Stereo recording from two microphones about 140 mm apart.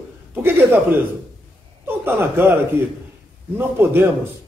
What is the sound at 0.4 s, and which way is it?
A man's voice, 15° right (ahead or behind).